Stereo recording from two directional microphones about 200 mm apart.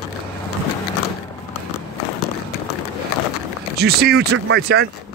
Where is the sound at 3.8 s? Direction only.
55° right (ahead or behind).